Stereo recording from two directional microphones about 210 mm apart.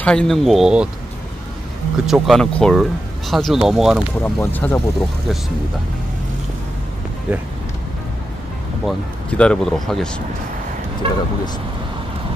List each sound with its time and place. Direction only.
0.0 s speech: 5° left (ahead or behind)
2.0 s speech: centre (ahead or behind)
4.2 s speech: 10° left (ahead or behind)
7.3 s speech: 5° right (ahead or behind)
8.8 s speech: 5° left (ahead or behind)
11.0 s speech: 25° right (ahead or behind)